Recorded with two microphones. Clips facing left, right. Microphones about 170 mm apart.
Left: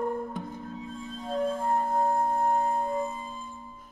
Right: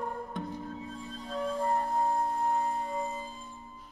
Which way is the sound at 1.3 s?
50° left (ahead or behind).